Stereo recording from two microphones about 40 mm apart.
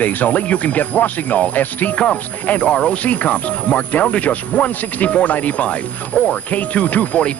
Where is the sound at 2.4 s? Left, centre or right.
Left.